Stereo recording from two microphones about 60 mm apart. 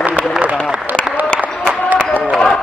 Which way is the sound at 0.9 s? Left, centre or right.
Right.